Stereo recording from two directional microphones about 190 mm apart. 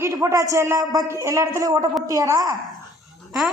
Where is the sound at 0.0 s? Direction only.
15° right (ahead or behind).